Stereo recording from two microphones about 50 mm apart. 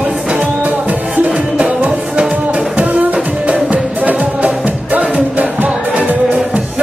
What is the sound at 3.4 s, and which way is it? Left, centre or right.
Music, right.